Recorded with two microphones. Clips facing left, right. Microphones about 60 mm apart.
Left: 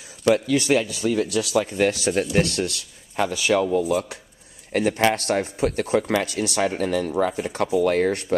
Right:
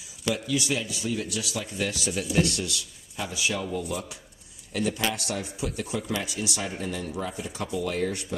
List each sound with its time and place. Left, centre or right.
0.2 s speech: left
3.3 s speech: left
4.7 s speech: left